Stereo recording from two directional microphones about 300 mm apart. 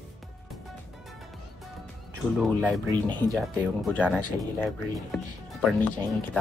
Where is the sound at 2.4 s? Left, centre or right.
Centre.